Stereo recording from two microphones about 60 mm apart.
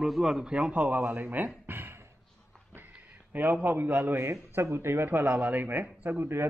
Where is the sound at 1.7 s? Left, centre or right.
Right.